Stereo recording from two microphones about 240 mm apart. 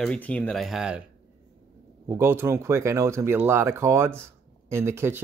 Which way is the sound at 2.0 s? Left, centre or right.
Centre.